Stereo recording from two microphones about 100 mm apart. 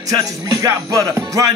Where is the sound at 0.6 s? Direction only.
35° right (ahead or behind).